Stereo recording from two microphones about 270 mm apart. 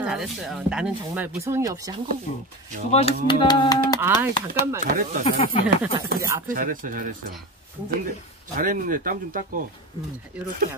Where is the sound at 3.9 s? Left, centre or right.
Centre.